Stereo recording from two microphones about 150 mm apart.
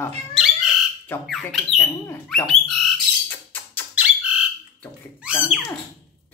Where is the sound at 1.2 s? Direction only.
Centre (ahead or behind).